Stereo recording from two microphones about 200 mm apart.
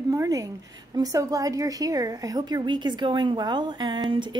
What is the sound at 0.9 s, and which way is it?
A woman's voice, 15° right (ahead or behind).